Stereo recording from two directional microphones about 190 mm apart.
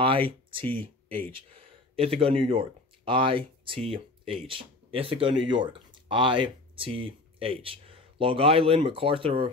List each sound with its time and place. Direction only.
0.0 s speech: 30° right (ahead or behind)